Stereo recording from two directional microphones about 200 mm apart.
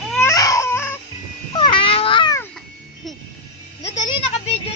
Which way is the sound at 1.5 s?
25° left (ahead or behind).